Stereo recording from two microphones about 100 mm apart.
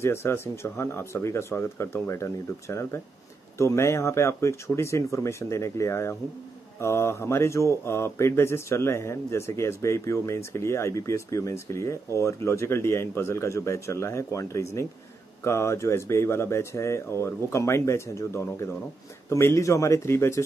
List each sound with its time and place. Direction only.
0.0 s speech: 25° left (ahead or behind)